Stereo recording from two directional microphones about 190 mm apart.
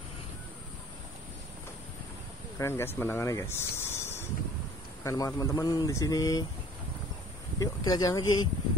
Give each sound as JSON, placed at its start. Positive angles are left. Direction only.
{"t": 2.6, "sound": "speech", "side_deg": 10}
{"t": 7.5, "sound": "speech", "side_deg": 20}